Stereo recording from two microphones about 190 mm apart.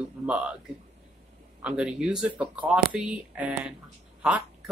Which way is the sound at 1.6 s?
5° right (ahead or behind).